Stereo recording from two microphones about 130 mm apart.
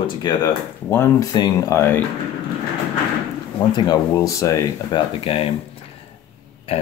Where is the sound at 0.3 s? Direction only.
35° left (ahead or behind).